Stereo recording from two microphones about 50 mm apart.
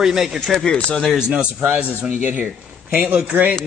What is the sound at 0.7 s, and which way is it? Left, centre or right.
Speech, centre.